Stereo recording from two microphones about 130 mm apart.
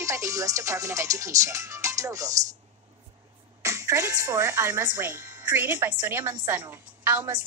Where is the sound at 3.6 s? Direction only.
25° right (ahead or behind).